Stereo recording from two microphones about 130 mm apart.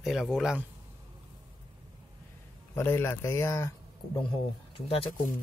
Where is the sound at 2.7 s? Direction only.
20° left (ahead or behind).